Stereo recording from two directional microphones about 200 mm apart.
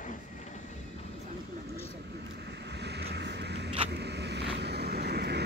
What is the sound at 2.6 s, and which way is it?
Vehicle, 55° right (ahead or behind).